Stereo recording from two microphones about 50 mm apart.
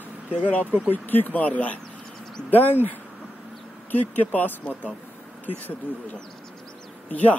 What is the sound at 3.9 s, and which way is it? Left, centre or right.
Speech, left.